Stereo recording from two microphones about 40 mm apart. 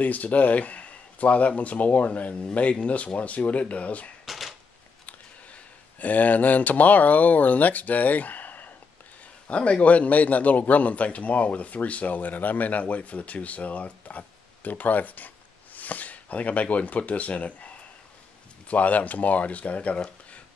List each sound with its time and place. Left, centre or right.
0.0 s a man's voice: left
4.3 s typewriter: centre
5.0 s speech: left
9.5 s a man's voice: left